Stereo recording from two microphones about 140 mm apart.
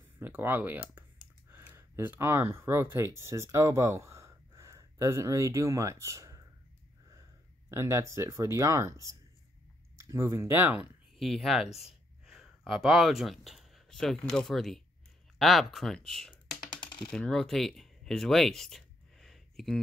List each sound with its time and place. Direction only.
0.2 s speech: 10° right (ahead or behind)
7.7 s speech: 20° right (ahead or behind)
11.1 s speech: centre (ahead or behind)
16.1 s computer keyboard: 5° left (ahead or behind)
17.1 s speech: 5° left (ahead or behind)